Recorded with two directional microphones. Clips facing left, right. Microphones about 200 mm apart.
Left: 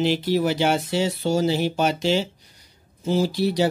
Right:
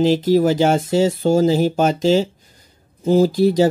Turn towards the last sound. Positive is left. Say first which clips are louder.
# right 7 dB
turn(degrees=-45)  # may be behind; listen again after turning